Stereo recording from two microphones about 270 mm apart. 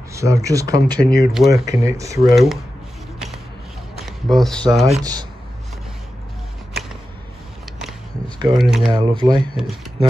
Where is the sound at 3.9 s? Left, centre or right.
Centre.